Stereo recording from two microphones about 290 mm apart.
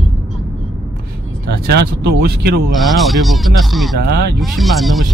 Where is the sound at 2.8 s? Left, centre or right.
Centre.